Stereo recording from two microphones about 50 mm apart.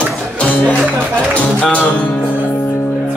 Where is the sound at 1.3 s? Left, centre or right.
Left.